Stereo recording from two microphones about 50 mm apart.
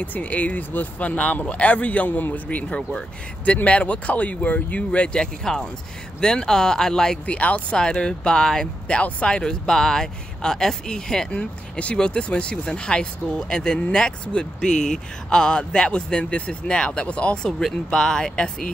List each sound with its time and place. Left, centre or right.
0.0 s speech: left; by 7.2 s centre
7.2 s speech: left
7.7 s speech: centre